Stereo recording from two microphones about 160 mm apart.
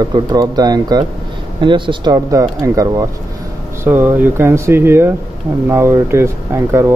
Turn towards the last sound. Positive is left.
turn(degrees=-15)  # may be behind; listen again after turning